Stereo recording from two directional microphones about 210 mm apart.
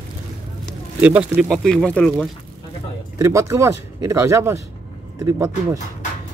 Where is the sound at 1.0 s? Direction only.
5° right (ahead or behind).